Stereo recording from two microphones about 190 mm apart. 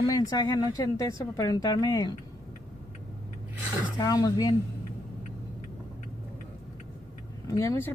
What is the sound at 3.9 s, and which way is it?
Speech, 20° left (ahead or behind).